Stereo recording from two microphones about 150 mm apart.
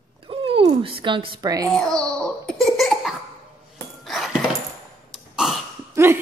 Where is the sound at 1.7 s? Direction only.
5° left (ahead or behind).